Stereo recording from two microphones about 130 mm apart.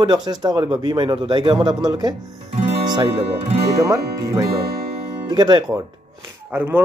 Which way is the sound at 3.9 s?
25° right (ahead or behind).